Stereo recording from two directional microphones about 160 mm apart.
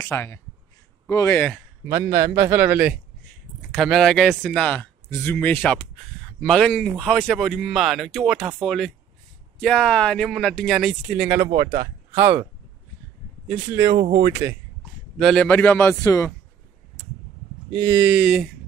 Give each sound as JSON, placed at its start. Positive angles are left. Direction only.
{"t": 0.0, "sound": "speech", "side_deg": 15}
{"t": 1.9, "sound": "a man's voice", "side_deg": -15}
{"t": 11.4, "sound": "speech", "side_deg": -25}
{"t": 14.3, "sound": "a man's voice", "side_deg": -15}
{"t": 15.1, "sound": "speech", "side_deg": 0}
{"t": 15.4, "sound": "speech", "side_deg": 10}
{"t": 17.6, "sound": "speech", "side_deg": -30}
{"t": 17.9, "sound": "a man's voice", "side_deg": -10}